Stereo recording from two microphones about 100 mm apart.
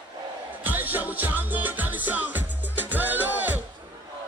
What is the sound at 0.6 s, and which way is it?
Music, 20° right (ahead or behind).